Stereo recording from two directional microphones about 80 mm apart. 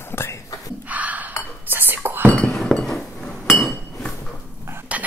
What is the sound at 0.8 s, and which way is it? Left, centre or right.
Chink, centre.